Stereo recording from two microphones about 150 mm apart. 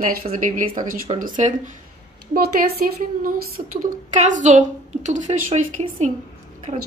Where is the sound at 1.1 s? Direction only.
40° right (ahead or behind).